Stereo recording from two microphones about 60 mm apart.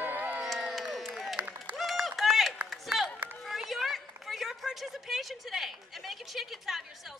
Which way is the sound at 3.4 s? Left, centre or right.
Centre.